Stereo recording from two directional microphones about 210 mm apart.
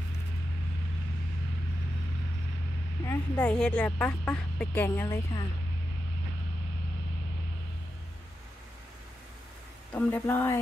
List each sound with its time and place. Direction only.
3.1 s speech: 10° left (ahead or behind)
9.9 s speech: 10° left (ahead or behind)